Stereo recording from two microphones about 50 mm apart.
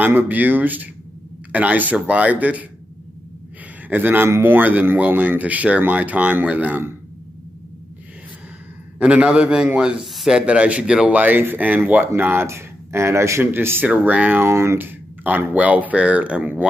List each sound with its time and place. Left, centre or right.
0.0 s a man's voice: right
3.9 s a man's voice: right
9.0 s a man's voice: right
9.9 s speech: centre
10.4 s a man's voice: right
11.1 s speech: right
12.4 s a man's voice: right
13.4 s speech: right
13.8 s speech: right
14.4 s speech: right
14.8 s speech: right